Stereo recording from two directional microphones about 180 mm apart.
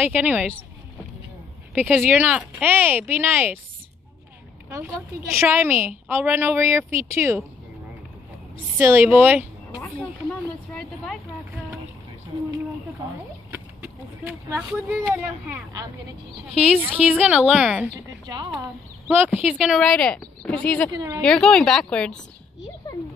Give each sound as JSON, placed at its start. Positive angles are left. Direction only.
{"t": 0.0, "sound": "a woman's voice", "side_deg": -10}
{"t": 1.8, "sound": "a woman's voice", "side_deg": -10}
{"t": 4.6, "sound": "a woman's voice", "side_deg": -15}
{"t": 8.7, "sound": "a woman's voice", "side_deg": -15}
{"t": 10.7, "sound": "a sound", "side_deg": 5}
{"t": 14.5, "sound": "a woman's voice", "side_deg": -10}
{"t": 18.3, "sound": "speech", "side_deg": -25}
{"t": 19.0, "sound": "a woman's voice", "side_deg": -10}
{"t": 20.9, "sound": "speech", "side_deg": -20}
{"t": 21.2, "sound": "speech", "side_deg": 5}